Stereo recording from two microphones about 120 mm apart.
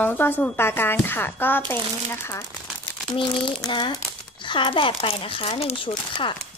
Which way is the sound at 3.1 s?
45° left (ahead or behind).